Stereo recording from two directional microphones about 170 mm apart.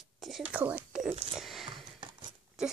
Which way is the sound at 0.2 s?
5° right (ahead or behind).